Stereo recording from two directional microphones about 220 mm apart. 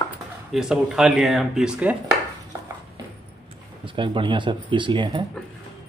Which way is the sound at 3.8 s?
25° right (ahead or behind).